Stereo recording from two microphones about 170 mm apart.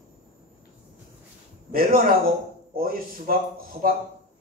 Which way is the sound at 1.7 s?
60° right (ahead or behind).